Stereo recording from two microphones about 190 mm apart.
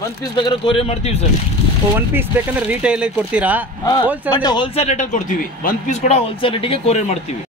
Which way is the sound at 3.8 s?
20° left (ahead or behind).